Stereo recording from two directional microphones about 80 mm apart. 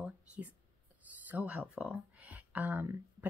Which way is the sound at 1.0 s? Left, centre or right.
Centre.